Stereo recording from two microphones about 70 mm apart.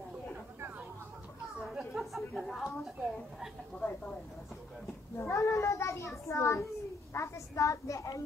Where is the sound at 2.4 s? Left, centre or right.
Centre.